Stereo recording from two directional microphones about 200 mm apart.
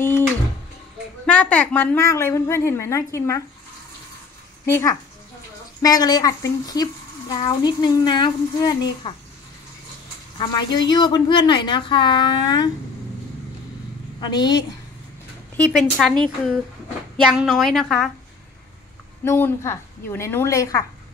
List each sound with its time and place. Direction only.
1.2 s a woman's voice: 5° left (ahead or behind)
4.6 s a woman's voice: 15° left (ahead or behind)
10.9 s speech: 20° left (ahead or behind)
14.2 s speech: 20° left (ahead or behind)
15.5 s speech: centre (ahead or behind)
19.2 s a woman's voice: 10° left (ahead or behind)